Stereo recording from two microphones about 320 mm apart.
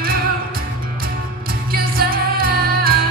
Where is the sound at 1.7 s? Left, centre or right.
Right.